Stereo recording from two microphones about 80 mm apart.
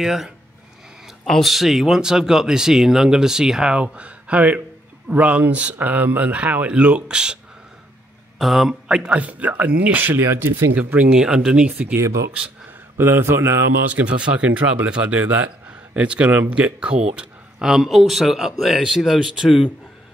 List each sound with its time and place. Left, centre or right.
0.0 s speech: centre
8.4 s speech: centre; by 10.5 s right
10.8 s speech: centre
12.0 s a man's voice: right
12.9 s a man's voice: right
13.9 s speech: centre